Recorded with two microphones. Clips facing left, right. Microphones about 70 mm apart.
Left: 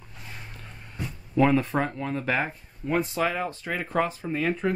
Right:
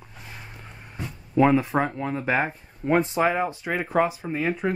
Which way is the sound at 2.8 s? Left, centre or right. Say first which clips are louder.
Right 5 dB; right.